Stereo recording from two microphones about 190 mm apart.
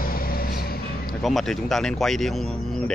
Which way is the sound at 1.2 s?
Centre (ahead or behind).